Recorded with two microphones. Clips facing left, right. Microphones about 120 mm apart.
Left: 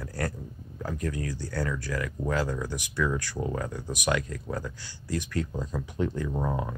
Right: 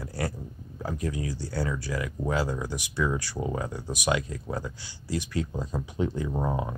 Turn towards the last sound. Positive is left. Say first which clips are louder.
# right 1 dB
turn(degrees=-15)  # may be behind; listen again after turning